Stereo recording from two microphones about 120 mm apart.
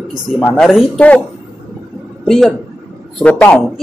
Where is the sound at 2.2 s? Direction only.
Centre (ahead or behind).